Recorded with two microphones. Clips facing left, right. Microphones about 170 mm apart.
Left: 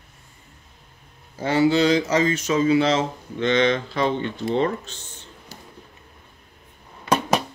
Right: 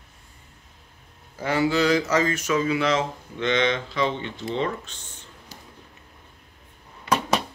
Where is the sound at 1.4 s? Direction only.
25° left (ahead or behind).